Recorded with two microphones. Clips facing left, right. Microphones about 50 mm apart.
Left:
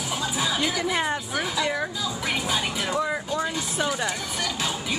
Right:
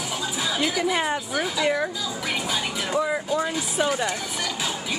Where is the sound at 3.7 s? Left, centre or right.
Centre.